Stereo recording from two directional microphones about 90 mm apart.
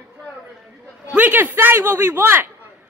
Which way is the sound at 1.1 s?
20° right (ahead or behind).